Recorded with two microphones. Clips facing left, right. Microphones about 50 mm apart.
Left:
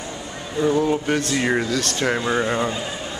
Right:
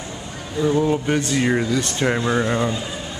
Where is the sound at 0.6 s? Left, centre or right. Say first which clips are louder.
Even; centre.